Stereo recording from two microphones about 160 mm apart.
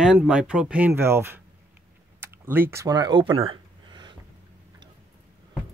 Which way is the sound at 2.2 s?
15° right (ahead or behind).